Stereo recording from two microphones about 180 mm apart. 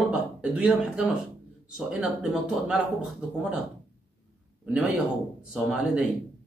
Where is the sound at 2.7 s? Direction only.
5° right (ahead or behind).